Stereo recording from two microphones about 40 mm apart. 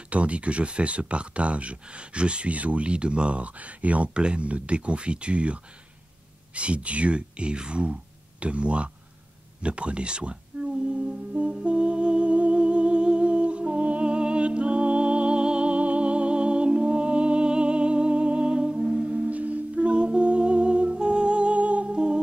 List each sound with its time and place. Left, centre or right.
0.1 s speech: right
4.1 s speech: right
9.6 s a sound: right
21.9 s music: right